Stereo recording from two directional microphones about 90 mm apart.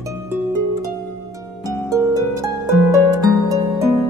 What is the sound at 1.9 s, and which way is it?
Harp, 35° right (ahead or behind).